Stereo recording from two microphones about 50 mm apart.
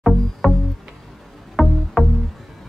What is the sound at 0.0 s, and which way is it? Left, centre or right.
Music, centre.